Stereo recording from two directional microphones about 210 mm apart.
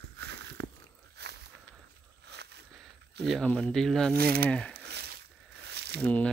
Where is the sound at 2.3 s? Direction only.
55° right (ahead or behind).